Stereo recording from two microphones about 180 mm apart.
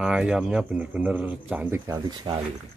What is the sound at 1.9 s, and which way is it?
Speech, 25° right (ahead or behind).